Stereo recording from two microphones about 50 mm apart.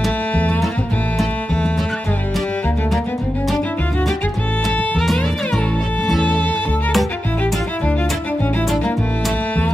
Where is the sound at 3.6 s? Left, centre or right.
Left.